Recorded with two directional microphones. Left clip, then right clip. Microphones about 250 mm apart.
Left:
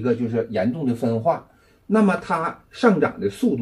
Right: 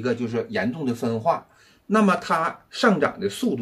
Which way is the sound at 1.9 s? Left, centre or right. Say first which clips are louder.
Even; centre.